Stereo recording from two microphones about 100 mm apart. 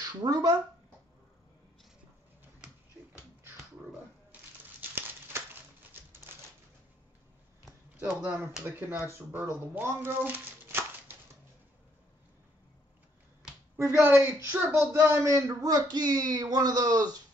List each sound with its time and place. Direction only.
0.0 s speech: 45° right (ahead or behind)
4.3 s typewriter: 15° right (ahead or behind)
4.9 s a sound: 20° right (ahead or behind)
8.0 s speech: 15° right (ahead or behind)
13.7 s speech: 25° right (ahead or behind)